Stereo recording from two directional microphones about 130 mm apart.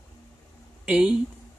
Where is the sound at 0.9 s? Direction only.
10° right (ahead or behind).